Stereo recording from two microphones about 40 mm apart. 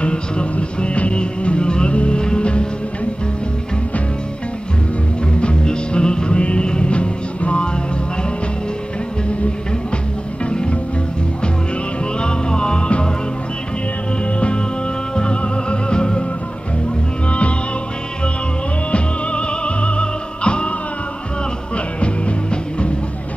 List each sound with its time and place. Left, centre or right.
0.0 s music: left
5.4 s music: left
10.4 s music: left
12.2 s music: left
15.1 s music: left
17.3 s music: left
18.9 s music: left
22.0 s music: left